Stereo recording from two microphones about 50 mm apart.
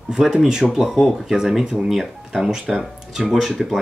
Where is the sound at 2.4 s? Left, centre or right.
Centre.